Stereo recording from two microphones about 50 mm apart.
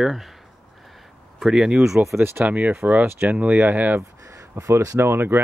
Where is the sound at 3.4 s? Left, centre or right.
Right.